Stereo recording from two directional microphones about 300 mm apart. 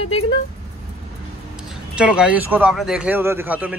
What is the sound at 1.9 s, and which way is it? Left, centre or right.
A man's voice, centre.